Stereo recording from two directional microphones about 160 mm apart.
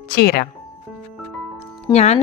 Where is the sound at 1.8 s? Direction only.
40° left (ahead or behind).